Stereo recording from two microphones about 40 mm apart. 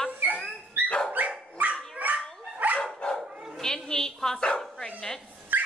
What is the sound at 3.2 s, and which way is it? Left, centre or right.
Dog, centre.